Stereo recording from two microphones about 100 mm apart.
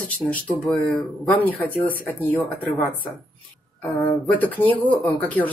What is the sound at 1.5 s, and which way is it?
Speech, 15° left (ahead or behind).